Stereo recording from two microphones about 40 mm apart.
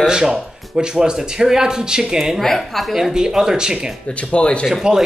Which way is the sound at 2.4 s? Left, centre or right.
Centre.